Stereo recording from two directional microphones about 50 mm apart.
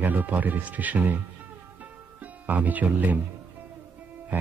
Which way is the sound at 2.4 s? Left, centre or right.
Right.